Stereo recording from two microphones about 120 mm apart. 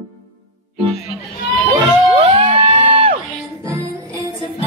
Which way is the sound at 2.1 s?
50° right (ahead or behind).